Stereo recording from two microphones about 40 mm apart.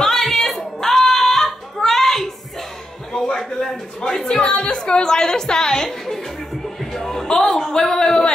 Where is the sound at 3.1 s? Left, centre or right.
Centre.